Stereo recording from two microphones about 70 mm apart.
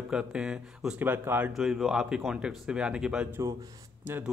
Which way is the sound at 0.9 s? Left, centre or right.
Right.